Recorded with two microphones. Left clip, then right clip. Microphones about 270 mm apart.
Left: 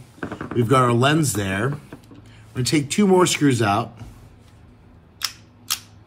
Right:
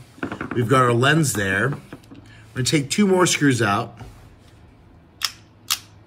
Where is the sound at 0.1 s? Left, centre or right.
Centre.